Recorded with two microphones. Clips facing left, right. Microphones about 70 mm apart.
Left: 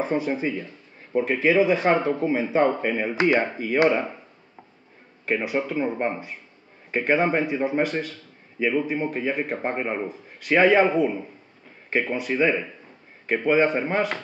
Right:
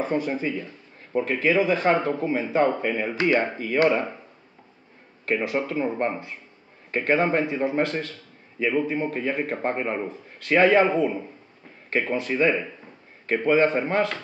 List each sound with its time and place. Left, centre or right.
0.0 s speech: centre
5.2 s speech: centre